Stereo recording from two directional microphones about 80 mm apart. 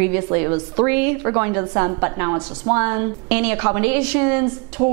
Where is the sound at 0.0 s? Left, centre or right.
Right.